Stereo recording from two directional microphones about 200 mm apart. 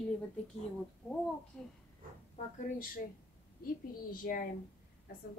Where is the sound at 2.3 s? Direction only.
45° left (ahead or behind).